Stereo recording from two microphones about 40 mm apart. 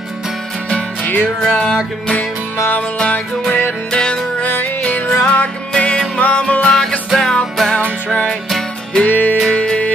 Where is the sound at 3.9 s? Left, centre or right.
Left.